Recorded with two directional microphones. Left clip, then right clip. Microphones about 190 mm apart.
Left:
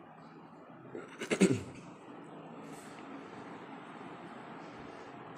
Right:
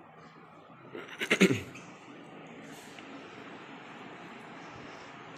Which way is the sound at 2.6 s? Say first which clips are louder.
Right 1 dB; centre (ahead or behind).